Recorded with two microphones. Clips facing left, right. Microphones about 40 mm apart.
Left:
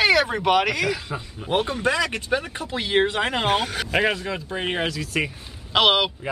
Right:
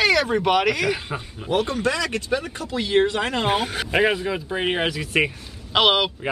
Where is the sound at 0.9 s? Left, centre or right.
Centre.